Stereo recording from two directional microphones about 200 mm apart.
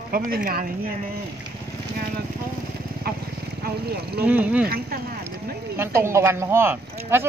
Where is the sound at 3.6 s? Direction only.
50° right (ahead or behind).